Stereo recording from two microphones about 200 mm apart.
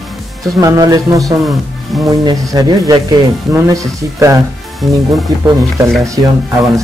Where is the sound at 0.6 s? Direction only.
15° right (ahead or behind).